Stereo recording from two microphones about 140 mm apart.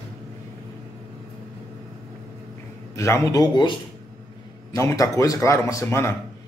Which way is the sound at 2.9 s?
20° left (ahead or behind).